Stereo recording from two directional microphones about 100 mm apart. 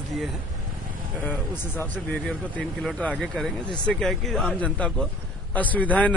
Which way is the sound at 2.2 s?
5° left (ahead or behind).